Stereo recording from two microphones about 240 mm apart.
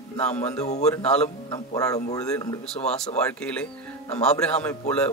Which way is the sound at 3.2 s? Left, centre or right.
Centre.